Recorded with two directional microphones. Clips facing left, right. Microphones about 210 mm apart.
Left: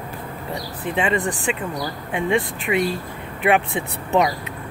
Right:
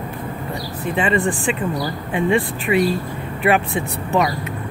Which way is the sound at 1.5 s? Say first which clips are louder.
Right 3 dB; 10° left (ahead or behind).